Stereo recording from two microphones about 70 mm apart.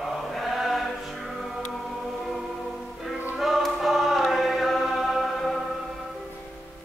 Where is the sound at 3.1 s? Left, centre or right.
Centre.